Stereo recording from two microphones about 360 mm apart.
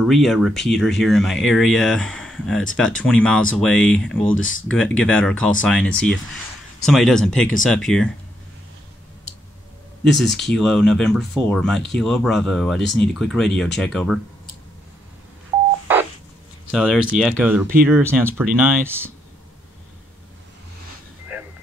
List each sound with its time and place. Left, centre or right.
0.0 s speech: centre
4.4 s speech: left
4.6 s speech: centre
10.1 s speech: centre
16.7 s speech: centre